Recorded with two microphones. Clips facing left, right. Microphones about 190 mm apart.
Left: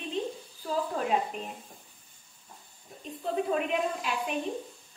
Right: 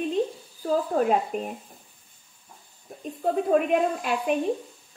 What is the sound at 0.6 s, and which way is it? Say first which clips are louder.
Speech: right 7 dB; 50° right (ahead or behind).